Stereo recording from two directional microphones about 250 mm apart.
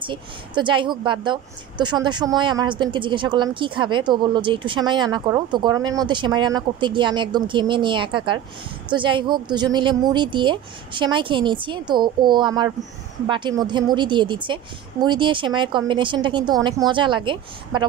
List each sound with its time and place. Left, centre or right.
0.0 s a woman's voice: centre